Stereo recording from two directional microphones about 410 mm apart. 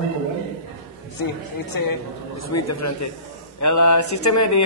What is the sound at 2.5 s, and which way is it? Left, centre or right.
A woman's voice, left.